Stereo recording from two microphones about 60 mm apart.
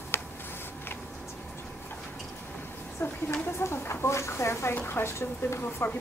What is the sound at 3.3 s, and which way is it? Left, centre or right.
Speech, left.